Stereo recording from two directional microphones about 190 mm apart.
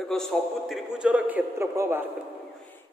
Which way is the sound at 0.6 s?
5° right (ahead or behind).